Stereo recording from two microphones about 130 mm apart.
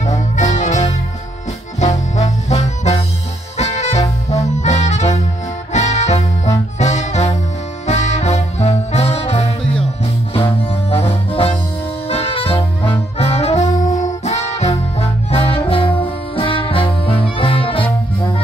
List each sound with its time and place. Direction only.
0.0 s music: 60° left (ahead or behind); by 17.8 s 45° left (ahead or behind)